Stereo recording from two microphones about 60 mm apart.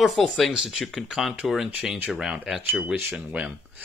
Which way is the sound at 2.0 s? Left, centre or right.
Centre.